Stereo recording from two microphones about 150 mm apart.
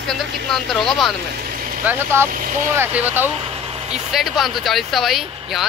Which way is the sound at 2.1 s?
15° right (ahead or behind).